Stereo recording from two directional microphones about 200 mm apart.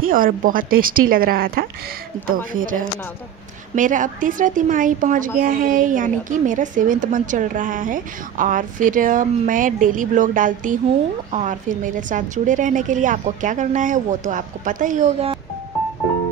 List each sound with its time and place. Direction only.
0.0 s a woman's voice: 45° right (ahead or behind)